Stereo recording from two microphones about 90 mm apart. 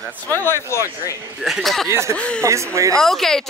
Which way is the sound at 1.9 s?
30° right (ahead or behind).